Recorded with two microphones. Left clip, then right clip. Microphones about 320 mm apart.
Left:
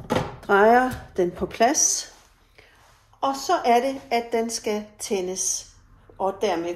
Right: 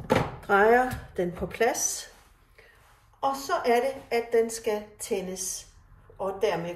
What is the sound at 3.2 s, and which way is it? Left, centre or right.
A woman's voice, left.